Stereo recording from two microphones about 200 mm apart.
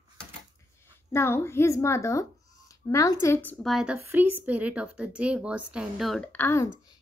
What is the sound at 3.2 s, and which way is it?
Speech, 10° left (ahead or behind).